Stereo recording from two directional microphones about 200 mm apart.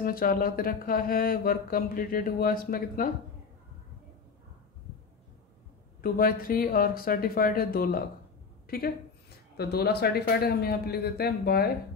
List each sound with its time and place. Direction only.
0.0 s speech: 45° left (ahead or behind)
5.9 s a woman's voice: 45° left (ahead or behind)